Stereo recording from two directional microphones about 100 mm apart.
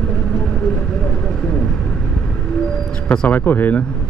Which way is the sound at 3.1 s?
15° left (ahead or behind).